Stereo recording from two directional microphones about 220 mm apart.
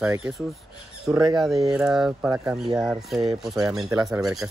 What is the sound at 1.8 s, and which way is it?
Speech, 5° right (ahead or behind).